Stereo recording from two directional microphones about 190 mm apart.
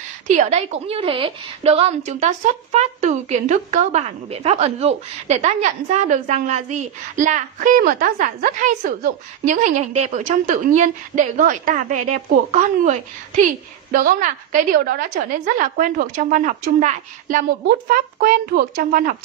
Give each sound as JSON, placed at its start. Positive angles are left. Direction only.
{"t": 0.3, "sound": "a woman's voice", "side_deg": -35}